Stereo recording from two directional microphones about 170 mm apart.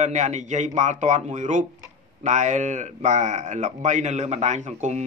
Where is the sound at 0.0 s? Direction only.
45° right (ahead or behind).